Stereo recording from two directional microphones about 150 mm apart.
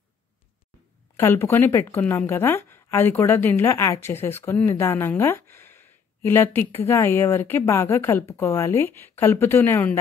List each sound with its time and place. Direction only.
1.1 s a woman's voice: 15° left (ahead or behind)